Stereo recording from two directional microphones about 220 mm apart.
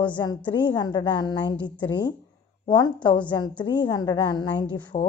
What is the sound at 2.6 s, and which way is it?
A woman's voice, 20° left (ahead or behind).